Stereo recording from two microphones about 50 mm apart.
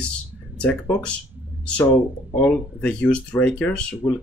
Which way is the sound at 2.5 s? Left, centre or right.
Left.